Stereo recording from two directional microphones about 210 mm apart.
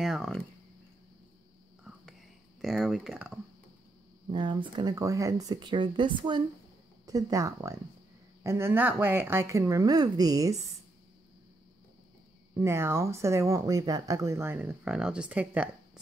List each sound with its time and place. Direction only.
0.0 s speech: centre (ahead or behind)
1.9 s whispering: centre (ahead or behind)
2.6 s speech: centre (ahead or behind)
4.3 s speech: 20° right (ahead or behind)
12.5 s speech: 10° right (ahead or behind)